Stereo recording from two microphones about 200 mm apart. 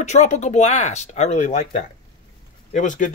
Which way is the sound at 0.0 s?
35° left (ahead or behind).